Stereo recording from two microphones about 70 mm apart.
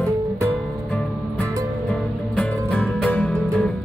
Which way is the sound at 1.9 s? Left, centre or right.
Centre.